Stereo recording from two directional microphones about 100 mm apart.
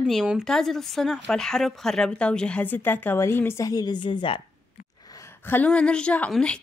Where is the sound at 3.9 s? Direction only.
55° left (ahead or behind).